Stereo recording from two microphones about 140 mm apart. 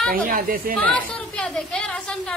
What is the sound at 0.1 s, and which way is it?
Speech, 90° right.